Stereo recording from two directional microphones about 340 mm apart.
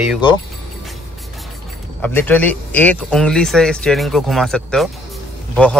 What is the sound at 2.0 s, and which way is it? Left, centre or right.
Speech, centre.